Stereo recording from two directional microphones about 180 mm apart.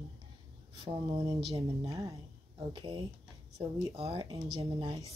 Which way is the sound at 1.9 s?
15° right (ahead or behind).